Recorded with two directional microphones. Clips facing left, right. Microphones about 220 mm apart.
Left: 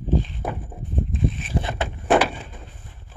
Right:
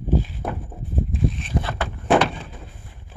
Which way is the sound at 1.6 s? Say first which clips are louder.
Left 1 dB; 20° left (ahead or behind).